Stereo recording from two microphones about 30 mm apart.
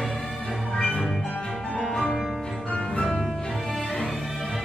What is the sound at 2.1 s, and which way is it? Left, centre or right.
Music, centre.